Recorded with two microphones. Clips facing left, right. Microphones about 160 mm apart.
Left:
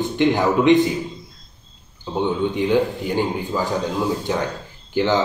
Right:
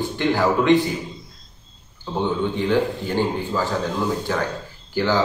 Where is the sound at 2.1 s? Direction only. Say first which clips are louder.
Left 2 dB; 15° left (ahead or behind).